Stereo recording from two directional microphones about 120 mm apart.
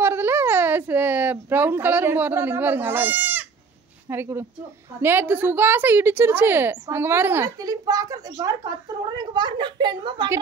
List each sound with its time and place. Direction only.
0.0 s a sound: 20° right (ahead or behind)
4.1 s a woman's voice: 20° right (ahead or behind)
7.5 s speech: 30° right (ahead or behind)